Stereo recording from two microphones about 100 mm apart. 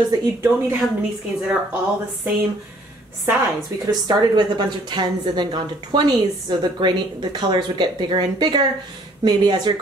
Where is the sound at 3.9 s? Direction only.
40° right (ahead or behind).